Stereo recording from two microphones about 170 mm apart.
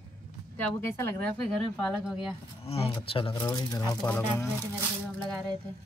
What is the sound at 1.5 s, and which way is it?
Speech, centre (ahead or behind).